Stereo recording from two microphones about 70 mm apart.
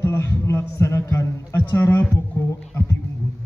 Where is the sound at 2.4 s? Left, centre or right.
Left.